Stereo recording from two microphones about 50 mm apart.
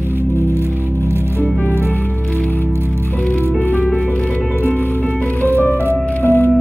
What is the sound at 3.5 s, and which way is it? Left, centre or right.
Music, left.